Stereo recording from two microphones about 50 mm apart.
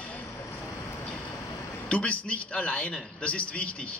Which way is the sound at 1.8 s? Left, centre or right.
Left.